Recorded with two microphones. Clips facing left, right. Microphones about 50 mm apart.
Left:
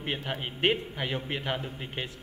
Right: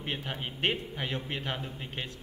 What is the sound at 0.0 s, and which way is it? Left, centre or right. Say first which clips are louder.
A man's voice: left 3 dB; centre.